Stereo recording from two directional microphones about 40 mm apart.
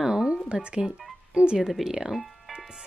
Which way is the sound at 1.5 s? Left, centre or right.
Centre.